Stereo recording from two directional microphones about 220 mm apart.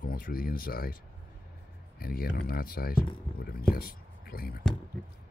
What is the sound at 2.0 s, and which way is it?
Speech, 45° left (ahead or behind).